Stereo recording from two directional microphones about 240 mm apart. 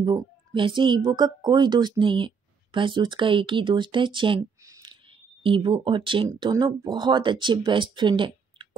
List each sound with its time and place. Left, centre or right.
0.0 s speech: centre